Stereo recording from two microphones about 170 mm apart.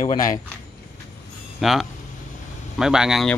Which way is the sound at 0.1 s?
20° left (ahead or behind).